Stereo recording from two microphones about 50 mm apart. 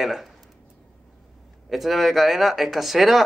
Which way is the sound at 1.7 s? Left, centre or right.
Centre.